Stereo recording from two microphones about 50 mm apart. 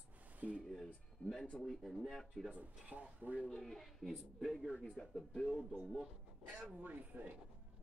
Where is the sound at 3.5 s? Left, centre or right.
Centre.